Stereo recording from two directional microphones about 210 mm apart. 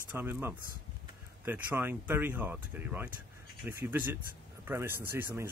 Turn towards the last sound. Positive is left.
turn(degrees=-10)  # may be behind; listen again after turning